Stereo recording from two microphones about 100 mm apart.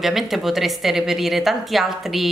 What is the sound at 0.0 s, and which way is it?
Speech, centre (ahead or behind).